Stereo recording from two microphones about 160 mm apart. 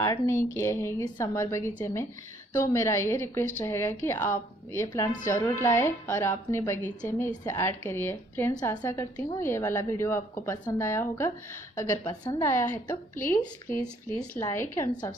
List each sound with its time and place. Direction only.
0.0 s a woman's voice: 20° left (ahead or behind)
12.4 s a woman's voice: 15° left (ahead or behind)